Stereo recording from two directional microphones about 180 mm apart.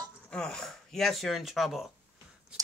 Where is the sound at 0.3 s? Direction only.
5° left (ahead or behind).